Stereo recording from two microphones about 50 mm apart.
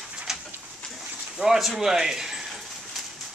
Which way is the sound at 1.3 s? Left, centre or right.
Centre.